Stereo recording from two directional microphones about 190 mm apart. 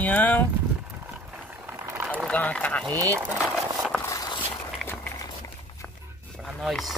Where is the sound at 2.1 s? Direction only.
5° left (ahead or behind).